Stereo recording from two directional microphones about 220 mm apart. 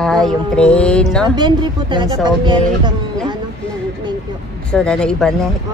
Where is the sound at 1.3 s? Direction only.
20° right (ahead or behind).